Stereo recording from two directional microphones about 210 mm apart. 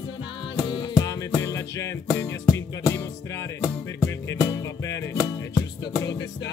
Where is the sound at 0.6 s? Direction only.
15° left (ahead or behind).